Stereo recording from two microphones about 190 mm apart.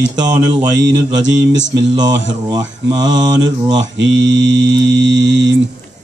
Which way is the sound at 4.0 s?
75° right (ahead or behind).